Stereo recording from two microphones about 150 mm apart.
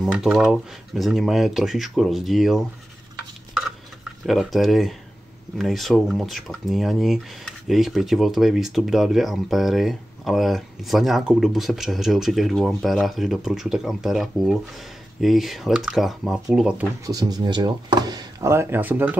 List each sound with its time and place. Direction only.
0.0 s speech: 5° right (ahead or behind)
4.3 s speech: centre (ahead or behind)
17.0 s speech: 25° right (ahead or behind)